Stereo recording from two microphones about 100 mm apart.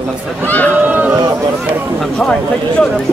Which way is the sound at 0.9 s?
15° right (ahead or behind).